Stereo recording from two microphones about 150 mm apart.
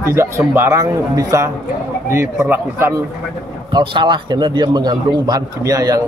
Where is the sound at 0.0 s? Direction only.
15° right (ahead or behind).